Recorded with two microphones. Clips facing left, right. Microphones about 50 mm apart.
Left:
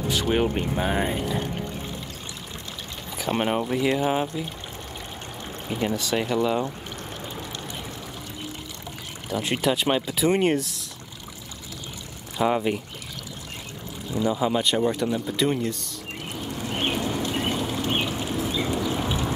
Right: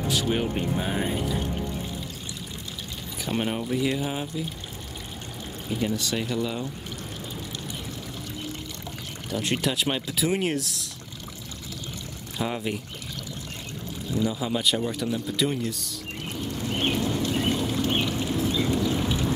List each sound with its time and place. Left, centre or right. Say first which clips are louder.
0.3 s speech: left 3 dB; centre
3.3 s speech: left 2 dB; left
5.7 s speech: left 2 dB; left
9.3 s speech: left 3 dB; centre
12.4 s speech: left 6 dB; centre
14.1 s speech: left 4 dB; centre
16.3 s a sound: right 1 dB; left